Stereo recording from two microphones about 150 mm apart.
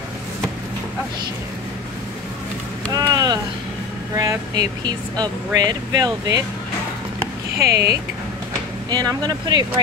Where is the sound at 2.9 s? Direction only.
25° right (ahead or behind).